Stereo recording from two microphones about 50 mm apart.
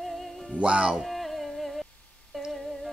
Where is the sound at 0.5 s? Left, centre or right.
Right.